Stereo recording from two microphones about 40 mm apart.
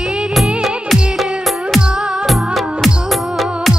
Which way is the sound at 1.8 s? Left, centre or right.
Right.